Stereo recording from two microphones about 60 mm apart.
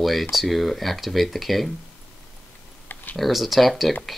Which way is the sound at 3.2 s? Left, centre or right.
Centre.